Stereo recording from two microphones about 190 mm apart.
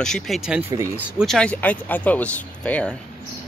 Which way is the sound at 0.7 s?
15° right (ahead or behind).